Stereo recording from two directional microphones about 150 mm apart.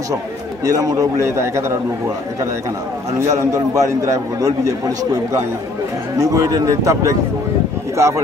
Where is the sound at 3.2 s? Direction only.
20° right (ahead or behind).